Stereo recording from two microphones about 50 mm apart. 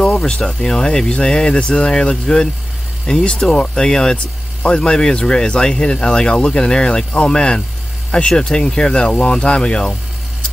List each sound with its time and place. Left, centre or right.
0.2 s speech: centre